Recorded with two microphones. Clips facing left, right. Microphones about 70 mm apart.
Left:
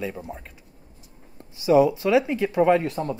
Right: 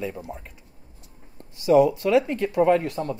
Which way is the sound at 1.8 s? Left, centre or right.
Left.